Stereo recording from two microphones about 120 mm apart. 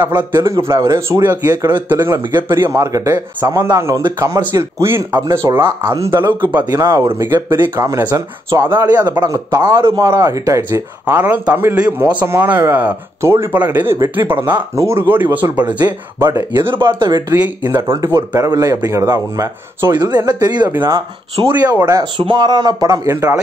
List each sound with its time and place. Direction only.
0.3 s speech: 20° right (ahead or behind)
16.7 s speech: 40° right (ahead or behind)
17.4 s speech: 15° right (ahead or behind)
17.8 s speech: 35° right (ahead or behind)